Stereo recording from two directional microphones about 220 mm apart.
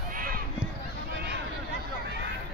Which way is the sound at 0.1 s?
40° right (ahead or behind).